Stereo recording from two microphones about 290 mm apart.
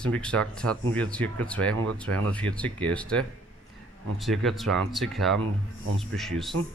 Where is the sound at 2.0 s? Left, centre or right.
Right.